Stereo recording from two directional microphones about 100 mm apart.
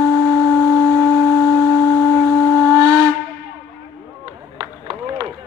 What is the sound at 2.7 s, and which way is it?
Steam whistle, 35° right (ahead or behind).